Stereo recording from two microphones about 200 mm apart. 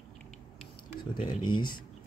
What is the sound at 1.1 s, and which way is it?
Speech, 25° left (ahead or behind).